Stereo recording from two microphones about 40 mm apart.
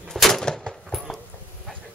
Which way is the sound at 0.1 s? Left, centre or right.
Centre.